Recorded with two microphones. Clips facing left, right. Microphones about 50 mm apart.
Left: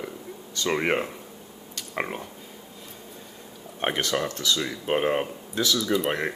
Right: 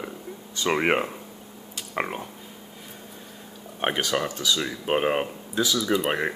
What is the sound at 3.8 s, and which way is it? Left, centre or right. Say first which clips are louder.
Speech: right 1 dB; centre.